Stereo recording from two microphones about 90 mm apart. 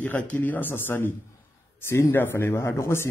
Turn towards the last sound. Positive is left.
turn(degrees=30)  # may be behind; listen again after turning